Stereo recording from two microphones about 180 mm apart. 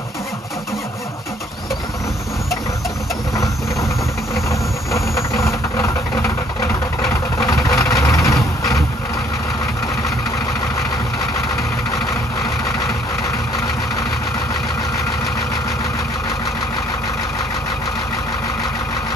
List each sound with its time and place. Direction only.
4.5 s vehicle: 15° left (ahead or behind)